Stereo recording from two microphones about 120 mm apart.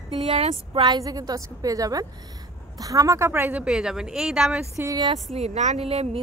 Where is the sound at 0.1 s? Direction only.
55° right (ahead or behind).